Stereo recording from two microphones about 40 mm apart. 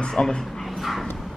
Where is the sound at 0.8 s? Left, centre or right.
Centre.